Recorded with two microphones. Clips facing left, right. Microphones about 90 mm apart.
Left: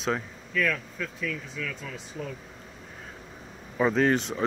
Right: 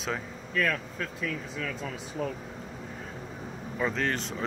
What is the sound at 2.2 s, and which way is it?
Speech, 45° right (ahead or behind).